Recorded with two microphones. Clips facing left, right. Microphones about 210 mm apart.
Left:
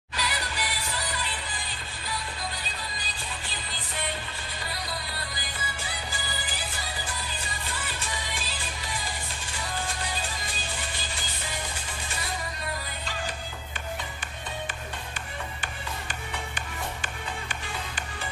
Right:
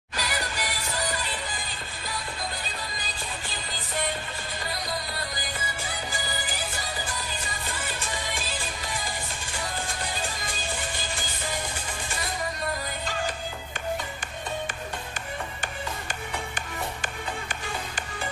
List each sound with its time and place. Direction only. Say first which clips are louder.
0.1 s music: right 2 dB; 45° right (ahead or behind)